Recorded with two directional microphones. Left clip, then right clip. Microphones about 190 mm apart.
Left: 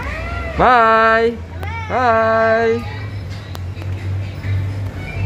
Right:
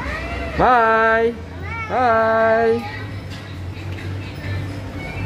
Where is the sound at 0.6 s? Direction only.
5° left (ahead or behind).